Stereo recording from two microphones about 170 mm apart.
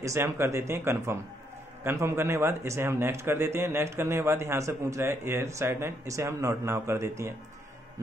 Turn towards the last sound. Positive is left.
turn(degrees=-15)  # may be behind; listen again after turning